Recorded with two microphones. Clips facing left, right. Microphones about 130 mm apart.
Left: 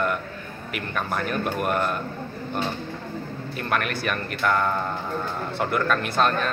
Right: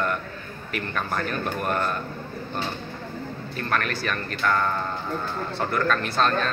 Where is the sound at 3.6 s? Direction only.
10° left (ahead or behind).